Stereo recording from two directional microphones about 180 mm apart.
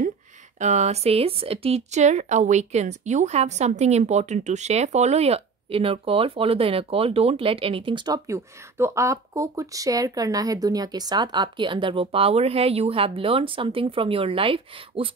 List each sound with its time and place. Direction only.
0.6 s a woman's voice: 40° right (ahead or behind)